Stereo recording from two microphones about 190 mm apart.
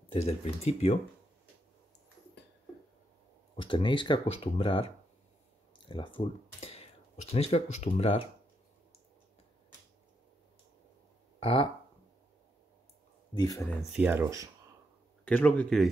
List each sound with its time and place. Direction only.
0.1 s speech: 35° left (ahead or behind)
3.5 s speech: 25° left (ahead or behind)
11.3 s speech: 30° left (ahead or behind)
13.3 s speech: 20° left (ahead or behind)
13.9 s speech: 10° right (ahead or behind)
15.2 s speech: 10° left (ahead or behind)